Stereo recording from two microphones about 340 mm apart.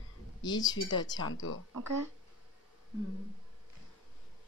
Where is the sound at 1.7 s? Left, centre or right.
Right.